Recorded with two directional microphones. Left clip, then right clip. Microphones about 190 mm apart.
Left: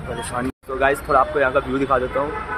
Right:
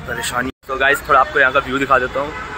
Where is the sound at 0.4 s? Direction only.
Centre (ahead or behind).